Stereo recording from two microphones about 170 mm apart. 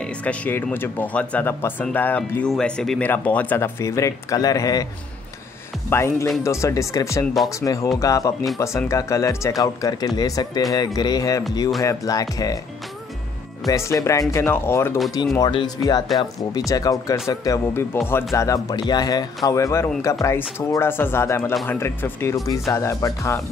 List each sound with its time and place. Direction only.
0.0 s speech: 10° left (ahead or behind)
5.9 s speech: 15° left (ahead or behind)
13.7 s speech: 20° left (ahead or behind)